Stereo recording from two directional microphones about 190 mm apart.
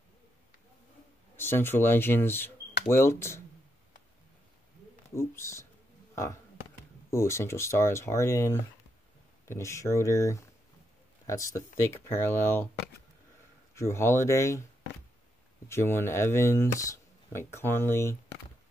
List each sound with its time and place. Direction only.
1.3 s speech: 10° left (ahead or behind)
5.1 s speech: 15° left (ahead or behind)
7.1 s speech: 15° left (ahead or behind)
13.7 s speech: 15° left (ahead or behind)
15.7 s speech: 10° left (ahead or behind)